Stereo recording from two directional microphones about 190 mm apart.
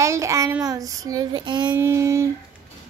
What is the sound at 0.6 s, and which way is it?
Child singing, 20° right (ahead or behind).